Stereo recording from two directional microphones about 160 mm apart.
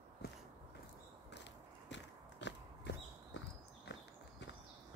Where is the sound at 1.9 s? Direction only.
90° left.